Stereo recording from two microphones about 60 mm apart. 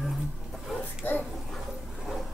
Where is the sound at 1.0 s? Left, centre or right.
Left.